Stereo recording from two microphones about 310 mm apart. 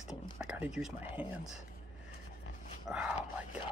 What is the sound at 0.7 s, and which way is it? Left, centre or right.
Speech, centre.